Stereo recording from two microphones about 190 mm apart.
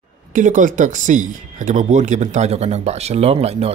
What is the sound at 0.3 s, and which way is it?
Speech, 40° right (ahead or behind).